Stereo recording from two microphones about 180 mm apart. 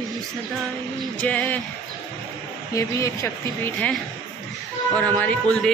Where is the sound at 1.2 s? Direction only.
10° left (ahead or behind).